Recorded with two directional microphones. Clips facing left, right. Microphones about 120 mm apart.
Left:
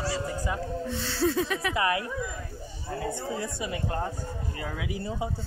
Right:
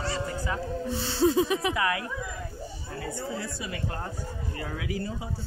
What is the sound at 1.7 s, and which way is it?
Speech, 25° left (ahead or behind).